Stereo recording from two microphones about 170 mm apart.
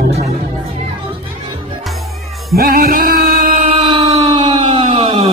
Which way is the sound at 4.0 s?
25° right (ahead or behind).